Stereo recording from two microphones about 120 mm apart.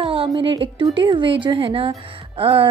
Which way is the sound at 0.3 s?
45° right (ahead or behind).